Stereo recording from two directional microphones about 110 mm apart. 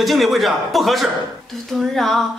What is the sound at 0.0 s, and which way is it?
A woman's voice, centre (ahead or behind).